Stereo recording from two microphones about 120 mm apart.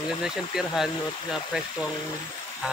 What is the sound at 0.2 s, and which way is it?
Speech, 5° right (ahead or behind).